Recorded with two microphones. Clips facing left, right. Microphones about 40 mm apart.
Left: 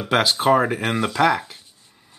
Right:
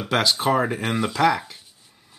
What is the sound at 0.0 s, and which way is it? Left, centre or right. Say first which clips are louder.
Speech: left 3 dB; centre.